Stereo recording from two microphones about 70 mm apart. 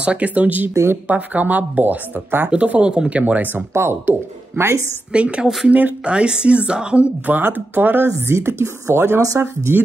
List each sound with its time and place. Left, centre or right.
0.0 s speech: centre
3.7 s speech: right
5.1 s a woman's voice: centre; by 9.2 s right
9.2 s speech: right